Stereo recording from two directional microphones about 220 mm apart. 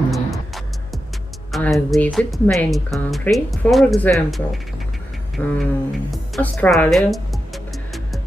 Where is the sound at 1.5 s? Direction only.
Centre (ahead or behind).